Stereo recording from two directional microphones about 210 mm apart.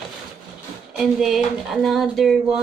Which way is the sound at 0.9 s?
Centre (ahead or behind).